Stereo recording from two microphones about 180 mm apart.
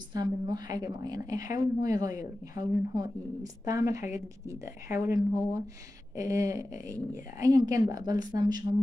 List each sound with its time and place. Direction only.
0.1 s a woman's voice: 20° right (ahead or behind)